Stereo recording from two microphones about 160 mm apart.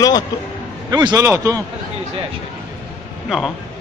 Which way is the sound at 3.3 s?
Centre (ahead or behind).